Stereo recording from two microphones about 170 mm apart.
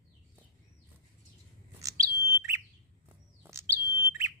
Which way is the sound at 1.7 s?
20° right (ahead or behind).